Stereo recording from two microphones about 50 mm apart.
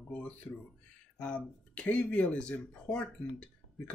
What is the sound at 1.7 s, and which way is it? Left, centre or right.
Speech, left.